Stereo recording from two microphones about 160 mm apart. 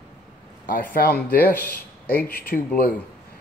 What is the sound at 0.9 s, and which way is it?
Speech, 70° left (ahead or behind).